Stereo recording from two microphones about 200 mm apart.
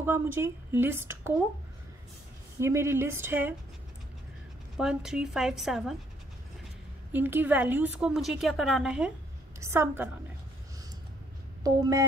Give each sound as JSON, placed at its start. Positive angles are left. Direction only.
{"t": 0.0, "sound": "a woman's voice", "side_deg": -10}
{"t": 2.6, "sound": "a woman's voice", "side_deg": -15}
{"t": 4.7, "sound": "a woman's voice", "side_deg": -5}
{"t": 7.1, "sound": "a woman's voice", "side_deg": -10}
{"t": 11.6, "sound": "a sound", "side_deg": -20}